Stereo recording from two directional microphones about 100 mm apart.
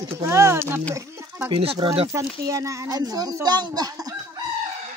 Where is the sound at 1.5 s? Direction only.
65° right (ahead or behind).